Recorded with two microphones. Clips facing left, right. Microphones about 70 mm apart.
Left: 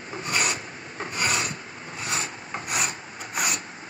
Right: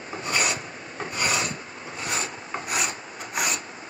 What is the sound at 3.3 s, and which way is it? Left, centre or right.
Vehicle, right.